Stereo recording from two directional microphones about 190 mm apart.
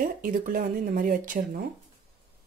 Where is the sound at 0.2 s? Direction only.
45° right (ahead or behind).